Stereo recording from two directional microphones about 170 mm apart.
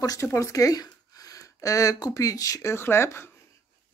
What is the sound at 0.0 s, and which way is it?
Speech, 20° left (ahead or behind).